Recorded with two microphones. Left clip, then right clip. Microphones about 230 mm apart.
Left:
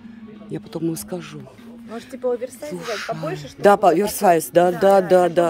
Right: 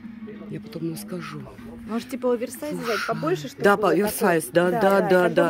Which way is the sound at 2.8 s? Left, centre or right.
Centre.